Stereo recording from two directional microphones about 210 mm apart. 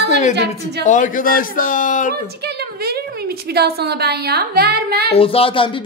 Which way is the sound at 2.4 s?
50° right (ahead or behind).